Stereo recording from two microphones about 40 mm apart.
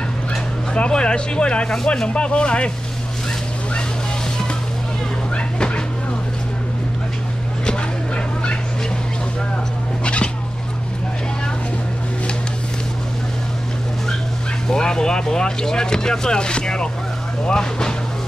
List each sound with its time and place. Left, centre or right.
0.7 s speech: left
10.0 s fowl: left
14.7 s speech: centre